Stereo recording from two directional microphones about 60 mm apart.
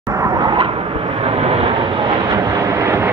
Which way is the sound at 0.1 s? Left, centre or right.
Right.